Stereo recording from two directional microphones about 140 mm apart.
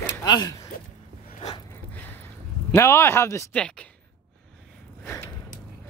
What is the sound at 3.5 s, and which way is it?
Speech, 10° left (ahead or behind).